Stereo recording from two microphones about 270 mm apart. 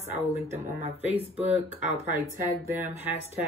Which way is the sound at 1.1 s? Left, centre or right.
Right.